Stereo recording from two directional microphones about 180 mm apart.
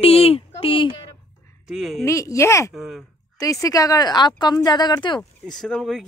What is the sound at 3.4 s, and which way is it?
Speech, 20° left (ahead or behind).